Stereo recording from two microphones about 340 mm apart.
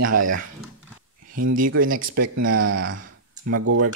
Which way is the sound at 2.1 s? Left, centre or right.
Right.